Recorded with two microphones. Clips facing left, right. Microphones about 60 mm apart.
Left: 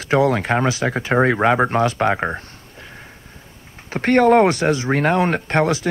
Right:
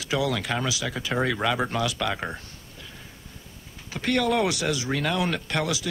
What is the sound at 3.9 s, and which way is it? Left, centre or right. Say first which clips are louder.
Speech: left 10 dB; left.